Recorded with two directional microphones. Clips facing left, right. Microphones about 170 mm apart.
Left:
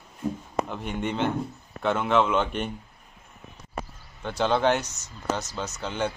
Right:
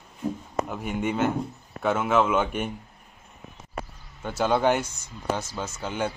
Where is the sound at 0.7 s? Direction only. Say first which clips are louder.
Right 2 dB; 5° right (ahead or behind).